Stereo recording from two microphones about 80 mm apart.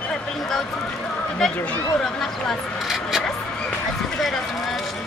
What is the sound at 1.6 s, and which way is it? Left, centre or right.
Speech, centre.